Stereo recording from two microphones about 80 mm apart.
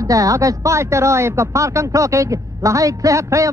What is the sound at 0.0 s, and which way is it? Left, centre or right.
Speech, right.